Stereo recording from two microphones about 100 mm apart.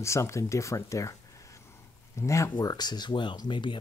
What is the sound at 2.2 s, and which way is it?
Speech, 30° left (ahead or behind).